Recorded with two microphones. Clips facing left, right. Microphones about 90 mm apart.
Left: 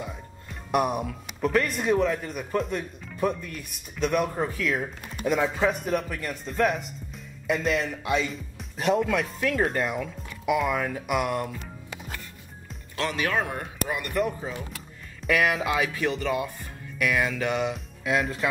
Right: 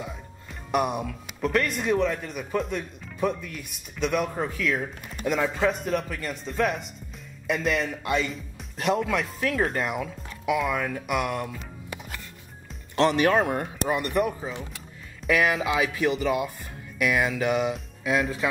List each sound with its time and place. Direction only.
0.7 s speech: centre (ahead or behind)
13.8 s speech: 30° right (ahead or behind)
14.1 s speech: 15° right (ahead or behind)
15.2 s speech: centre (ahead or behind)